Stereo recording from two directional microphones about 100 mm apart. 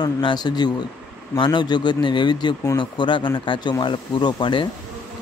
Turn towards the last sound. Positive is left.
turn(degrees=50)  # may be behind; listen again after turning